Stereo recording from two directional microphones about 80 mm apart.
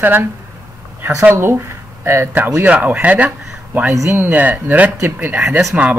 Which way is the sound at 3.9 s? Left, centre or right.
Right.